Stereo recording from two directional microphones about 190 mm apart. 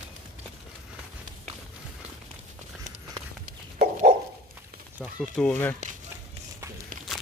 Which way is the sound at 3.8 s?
40° right (ahead or behind).